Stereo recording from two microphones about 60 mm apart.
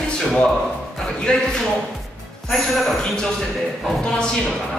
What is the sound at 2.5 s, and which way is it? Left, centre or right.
Speech, centre.